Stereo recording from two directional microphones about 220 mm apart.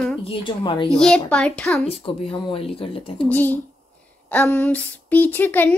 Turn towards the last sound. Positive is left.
turn(degrees=10)  # may be behind; listen again after turning